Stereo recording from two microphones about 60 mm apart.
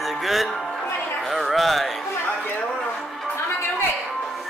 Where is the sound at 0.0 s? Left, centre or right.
Centre.